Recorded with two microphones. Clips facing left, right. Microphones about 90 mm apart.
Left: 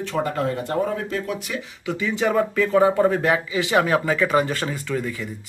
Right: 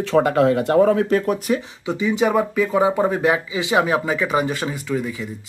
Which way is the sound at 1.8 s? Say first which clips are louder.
Right 2 dB; 15° right (ahead or behind).